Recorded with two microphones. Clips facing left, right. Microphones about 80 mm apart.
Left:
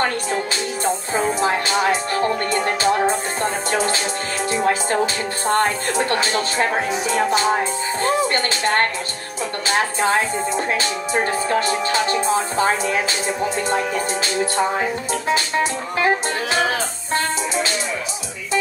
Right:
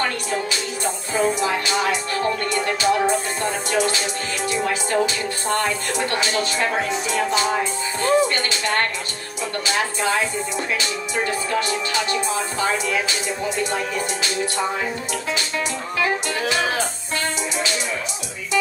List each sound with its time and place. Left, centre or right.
1.1 s music: left
14.8 s music: left